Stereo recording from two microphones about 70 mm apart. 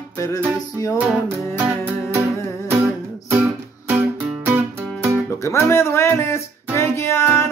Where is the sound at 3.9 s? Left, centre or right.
Right.